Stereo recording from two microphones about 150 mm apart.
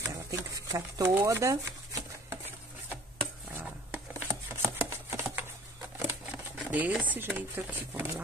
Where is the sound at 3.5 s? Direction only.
10° right (ahead or behind).